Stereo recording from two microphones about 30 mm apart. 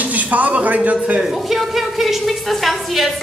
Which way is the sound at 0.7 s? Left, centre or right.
Right.